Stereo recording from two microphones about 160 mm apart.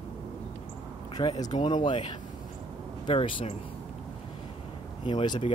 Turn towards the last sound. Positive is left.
turn(degrees=30)  # may be behind; listen again after turning